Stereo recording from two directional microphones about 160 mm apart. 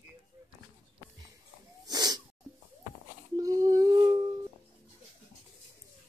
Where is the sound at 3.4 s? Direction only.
20° right (ahead or behind).